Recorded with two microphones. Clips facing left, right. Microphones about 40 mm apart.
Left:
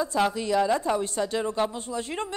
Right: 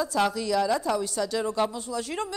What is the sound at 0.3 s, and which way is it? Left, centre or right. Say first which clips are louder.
Speech: left 1 dB; left.